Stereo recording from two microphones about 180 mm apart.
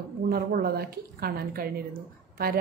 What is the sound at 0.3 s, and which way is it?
Speech, 55° right (ahead or behind).